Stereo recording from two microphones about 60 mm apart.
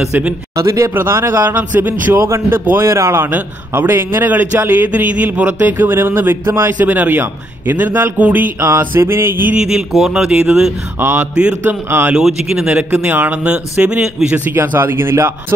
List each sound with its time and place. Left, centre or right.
0.6 s speech: right
0.9 s speech: right
2.9 s a sound: right
3.3 s speech: right
6.8 s speech: right
8.5 s a sound: right
9.9 s speech: centre
11.0 s speech: right
12.2 s speech: centre
12.6 s a man's voice: right
14.5 s speech: right